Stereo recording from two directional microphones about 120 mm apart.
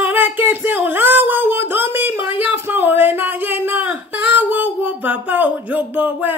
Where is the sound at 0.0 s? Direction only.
15° right (ahead or behind).